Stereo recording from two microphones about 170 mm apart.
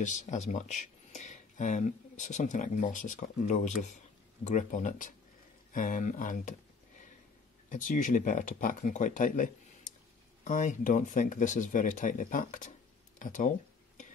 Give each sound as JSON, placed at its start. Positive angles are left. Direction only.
{"t": 0.0, "sound": "speech", "side_deg": 45}
{"t": 7.7, "sound": "speech", "side_deg": 50}